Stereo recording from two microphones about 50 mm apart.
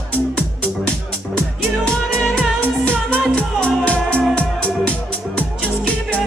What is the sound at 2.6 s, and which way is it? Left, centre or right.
Music, left.